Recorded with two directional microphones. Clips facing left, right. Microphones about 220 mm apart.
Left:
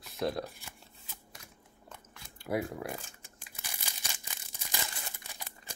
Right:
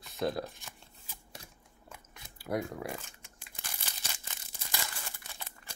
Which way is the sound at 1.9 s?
10° right (ahead or behind).